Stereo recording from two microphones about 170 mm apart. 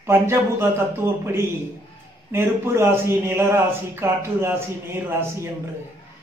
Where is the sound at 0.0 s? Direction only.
15° right (ahead or behind).